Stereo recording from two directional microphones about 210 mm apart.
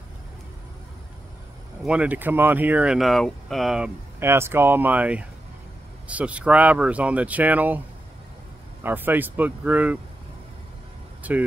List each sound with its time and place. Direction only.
1.9 s speech: 5° right (ahead or behind)
8.8 s speech: 10° right (ahead or behind)